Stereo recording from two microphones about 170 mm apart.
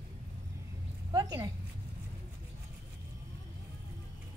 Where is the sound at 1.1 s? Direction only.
20° right (ahead or behind).